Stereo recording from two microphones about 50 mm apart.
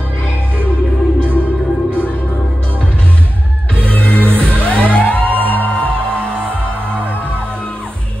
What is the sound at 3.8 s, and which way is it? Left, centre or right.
Music, left.